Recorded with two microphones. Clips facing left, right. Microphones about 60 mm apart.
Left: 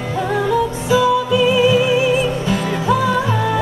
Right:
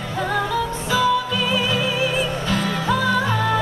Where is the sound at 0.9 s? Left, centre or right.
Centre.